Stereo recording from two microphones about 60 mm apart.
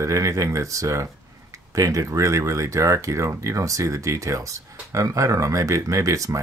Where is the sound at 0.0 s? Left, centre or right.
Right.